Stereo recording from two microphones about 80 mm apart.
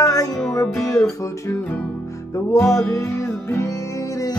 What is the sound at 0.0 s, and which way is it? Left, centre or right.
Music, left.